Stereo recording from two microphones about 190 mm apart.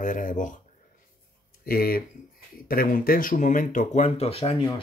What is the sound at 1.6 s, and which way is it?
Speech, 50° left (ahead or behind).